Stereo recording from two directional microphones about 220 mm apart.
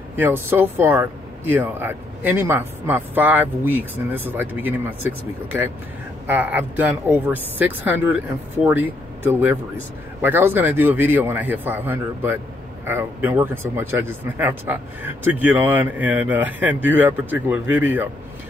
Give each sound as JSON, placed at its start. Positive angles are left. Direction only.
{"t": 0.1, "sound": "speech", "side_deg": -10}